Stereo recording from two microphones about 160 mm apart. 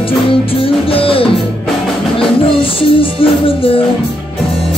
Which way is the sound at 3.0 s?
35° left (ahead or behind).